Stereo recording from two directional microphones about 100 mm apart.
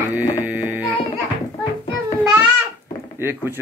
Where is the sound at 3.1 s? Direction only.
20° right (ahead or behind).